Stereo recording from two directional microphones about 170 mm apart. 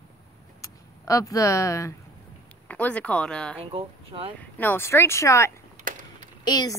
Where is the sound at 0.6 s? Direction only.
20° left (ahead or behind).